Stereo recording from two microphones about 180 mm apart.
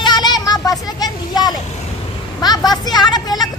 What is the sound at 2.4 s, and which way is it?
Vehicle, 20° left (ahead or behind).